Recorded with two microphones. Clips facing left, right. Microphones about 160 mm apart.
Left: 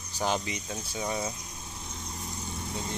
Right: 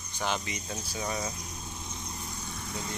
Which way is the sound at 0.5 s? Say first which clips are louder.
Left 1 dB; 20° left (ahead or behind).